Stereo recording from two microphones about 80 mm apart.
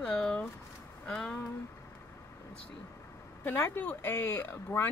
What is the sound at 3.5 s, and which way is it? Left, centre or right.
Speech, left.